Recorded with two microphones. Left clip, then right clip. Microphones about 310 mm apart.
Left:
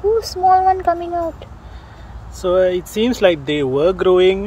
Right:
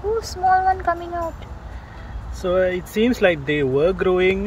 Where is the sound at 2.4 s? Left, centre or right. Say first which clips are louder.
Left 4 dB; centre.